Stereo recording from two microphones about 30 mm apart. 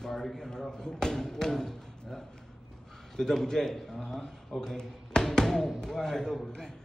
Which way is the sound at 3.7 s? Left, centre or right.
Centre.